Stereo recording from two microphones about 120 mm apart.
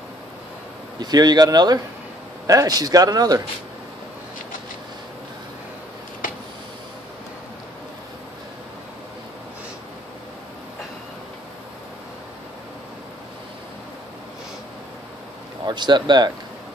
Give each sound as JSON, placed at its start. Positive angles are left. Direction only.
{"t": 0.9, "sound": "a man's voice", "side_deg": -35}
{"t": 15.6, "sound": "speech", "side_deg": -40}